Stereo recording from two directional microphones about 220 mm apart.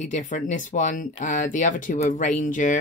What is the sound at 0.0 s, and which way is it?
Speech, 35° left (ahead or behind).